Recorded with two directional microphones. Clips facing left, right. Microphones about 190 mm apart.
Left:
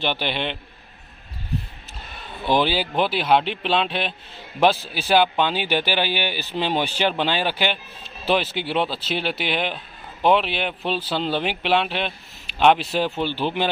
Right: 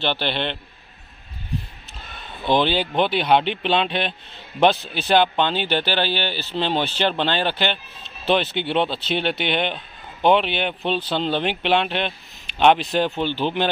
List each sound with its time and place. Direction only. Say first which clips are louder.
0.0 s speech: right 1 dB; 10° left (ahead or behind)
2.4 s speech: right 1 dB; 10° left (ahead or behind)